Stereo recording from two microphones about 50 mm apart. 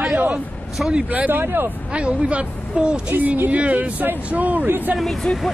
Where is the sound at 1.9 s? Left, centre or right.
Right.